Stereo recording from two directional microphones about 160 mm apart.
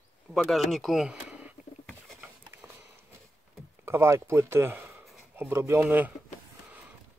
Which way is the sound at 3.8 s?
15° right (ahead or behind).